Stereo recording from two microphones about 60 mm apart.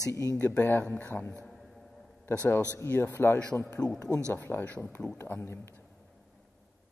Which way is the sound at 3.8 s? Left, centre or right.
Left.